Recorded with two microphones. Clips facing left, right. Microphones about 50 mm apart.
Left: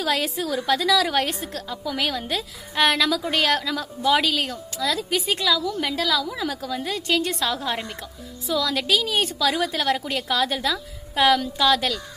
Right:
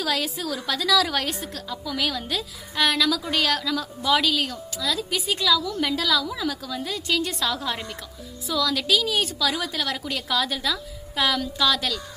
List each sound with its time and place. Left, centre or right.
0.0 s a woman's voice: left